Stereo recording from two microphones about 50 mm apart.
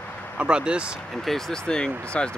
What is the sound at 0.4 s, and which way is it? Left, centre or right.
Speech, centre.